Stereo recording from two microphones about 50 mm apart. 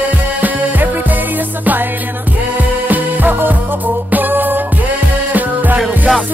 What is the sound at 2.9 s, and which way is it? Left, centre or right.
Music, right.